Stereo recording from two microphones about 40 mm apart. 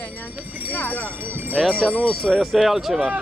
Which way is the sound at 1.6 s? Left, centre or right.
Centre.